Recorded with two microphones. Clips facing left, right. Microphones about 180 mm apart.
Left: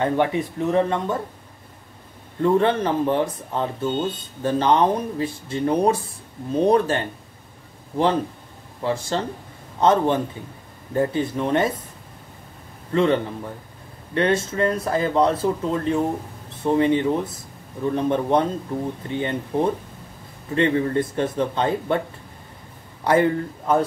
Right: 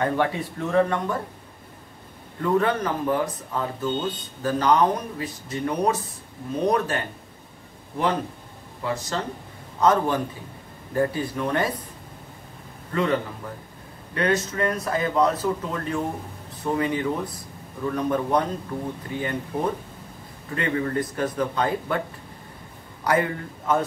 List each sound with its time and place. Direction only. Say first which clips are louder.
0.0 s speech: left 3 dB; 20° left (ahead or behind)
2.4 s speech: left 4 dB; 25° left (ahead or behind)
8.8 s speech: left 4 dB; 30° left (ahead or behind)
12.9 s speech: left 4 dB; 30° left (ahead or behind)
23.0 s speech: left 5 dB; 30° left (ahead or behind)